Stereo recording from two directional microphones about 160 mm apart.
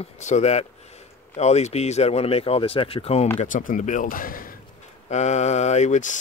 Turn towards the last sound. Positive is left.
turn(degrees=50)  # may be behind; listen again after turning